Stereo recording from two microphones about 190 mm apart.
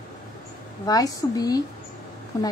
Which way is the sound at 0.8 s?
20° left (ahead or behind).